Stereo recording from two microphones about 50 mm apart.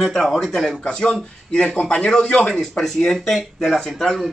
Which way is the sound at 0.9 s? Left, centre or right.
Centre.